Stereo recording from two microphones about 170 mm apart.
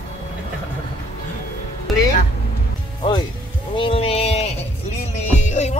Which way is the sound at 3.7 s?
30° left (ahead or behind).